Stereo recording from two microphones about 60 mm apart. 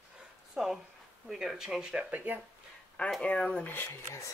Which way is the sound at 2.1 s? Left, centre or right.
Right.